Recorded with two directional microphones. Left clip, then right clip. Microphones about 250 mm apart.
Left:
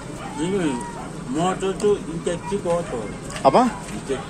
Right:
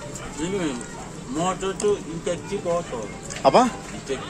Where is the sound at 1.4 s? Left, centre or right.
Centre.